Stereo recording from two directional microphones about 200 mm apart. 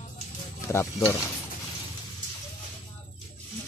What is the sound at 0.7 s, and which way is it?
Speech, 15° left (ahead or behind).